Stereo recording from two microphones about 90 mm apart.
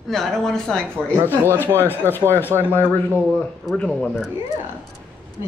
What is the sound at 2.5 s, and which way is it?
Speech, 30° right (ahead or behind).